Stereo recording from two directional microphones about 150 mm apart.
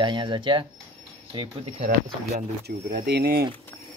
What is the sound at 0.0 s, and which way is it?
Speech, 30° right (ahead or behind).